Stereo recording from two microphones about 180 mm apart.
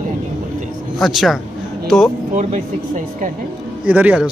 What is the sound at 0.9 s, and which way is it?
Speech, centre (ahead or behind).